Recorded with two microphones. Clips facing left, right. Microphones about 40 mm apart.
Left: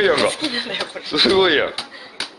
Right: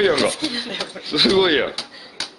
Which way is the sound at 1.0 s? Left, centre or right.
Centre.